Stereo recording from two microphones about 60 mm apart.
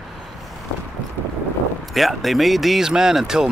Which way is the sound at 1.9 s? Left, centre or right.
Centre.